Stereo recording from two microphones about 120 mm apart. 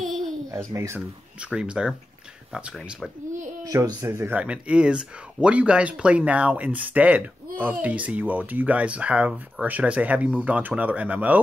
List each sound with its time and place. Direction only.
0.0 s babbling: centre (ahead or behind)
0.7 s speech: 25° right (ahead or behind)
1.4 s speech: 10° right (ahead or behind)
3.6 s speech: 30° right (ahead or behind)
4.3 s speech: 10° right (ahead or behind)